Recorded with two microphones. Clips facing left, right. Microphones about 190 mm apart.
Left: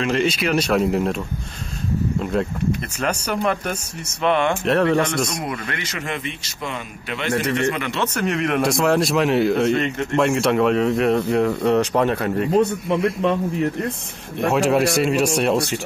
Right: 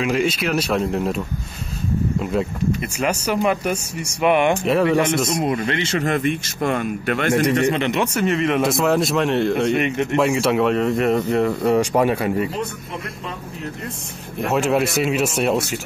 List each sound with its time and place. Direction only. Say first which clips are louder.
0.0 s speech: even; 5° right (ahead or behind)
3.0 s speech: right 3 dB; 5° right (ahead or behind)
5.3 s speech: right 7 dB; 25° right (ahead or behind)
6.0 s speech: right 8 dB; 50° right (ahead or behind)
7.7 s speech: right 5 dB; 25° right (ahead or behind)
8.0 s speech: right 2 dB; 5° right (ahead or behind)
9.8 s speech: right 2 dB; 15° right (ahead or behind)
10.1 s speech: left 1 dB; centre (ahead or behind)
12.9 s a man's voice: left 12 dB; 70° left (ahead or behind)
14.4 s speech: left 1 dB; centre (ahead or behind)